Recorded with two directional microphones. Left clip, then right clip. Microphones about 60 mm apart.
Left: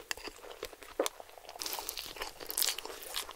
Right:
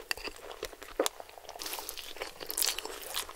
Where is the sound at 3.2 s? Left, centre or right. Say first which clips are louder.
Right 2 dB; centre.